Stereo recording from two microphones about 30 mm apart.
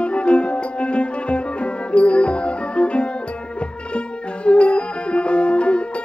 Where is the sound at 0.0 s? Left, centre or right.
Left.